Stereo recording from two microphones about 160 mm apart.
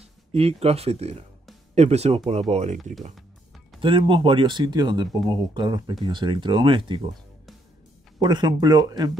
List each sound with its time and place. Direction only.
0.0 s speech: 40° right (ahead or behind)
2.8 s speech: centre (ahead or behind)
3.8 s speech: 35° right (ahead or behind)
8.2 s speech: 25° right (ahead or behind)